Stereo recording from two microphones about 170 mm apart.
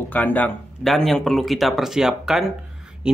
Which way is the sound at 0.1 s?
10° left (ahead or behind).